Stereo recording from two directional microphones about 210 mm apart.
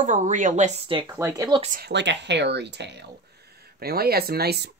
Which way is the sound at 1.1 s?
15° right (ahead or behind).